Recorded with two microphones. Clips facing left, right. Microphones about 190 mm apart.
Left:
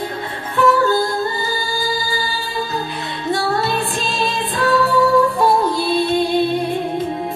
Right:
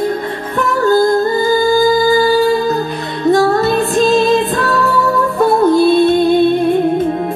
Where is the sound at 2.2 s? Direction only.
45° right (ahead or behind).